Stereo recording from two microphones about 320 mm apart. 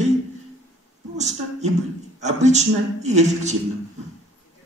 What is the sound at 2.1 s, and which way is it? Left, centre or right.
A man's voice, right.